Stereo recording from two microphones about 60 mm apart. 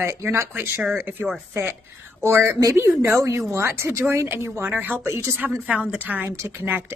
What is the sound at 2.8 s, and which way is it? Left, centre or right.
A woman's voice, right.